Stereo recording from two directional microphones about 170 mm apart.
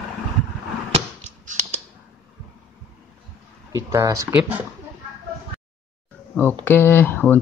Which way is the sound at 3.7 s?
20° right (ahead or behind).